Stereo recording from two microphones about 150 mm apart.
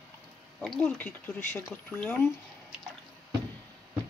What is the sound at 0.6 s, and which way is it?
Speech, 10° left (ahead or behind).